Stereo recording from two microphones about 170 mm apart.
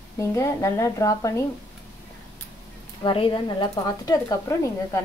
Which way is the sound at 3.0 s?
30° left (ahead or behind).